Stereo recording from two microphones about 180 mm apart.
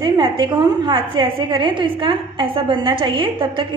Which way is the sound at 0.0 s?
25° right (ahead or behind).